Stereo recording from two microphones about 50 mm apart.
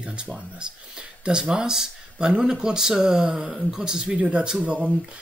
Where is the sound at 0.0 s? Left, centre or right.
Right.